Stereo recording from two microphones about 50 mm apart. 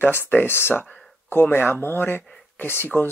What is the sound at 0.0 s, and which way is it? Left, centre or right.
Speech, left.